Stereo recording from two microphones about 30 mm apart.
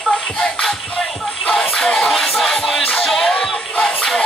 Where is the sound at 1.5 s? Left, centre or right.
Centre.